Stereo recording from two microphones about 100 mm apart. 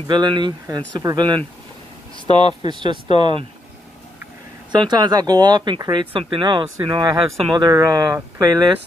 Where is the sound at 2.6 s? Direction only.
50° right (ahead or behind).